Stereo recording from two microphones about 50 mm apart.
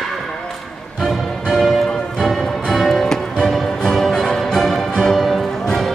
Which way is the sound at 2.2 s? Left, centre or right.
Centre.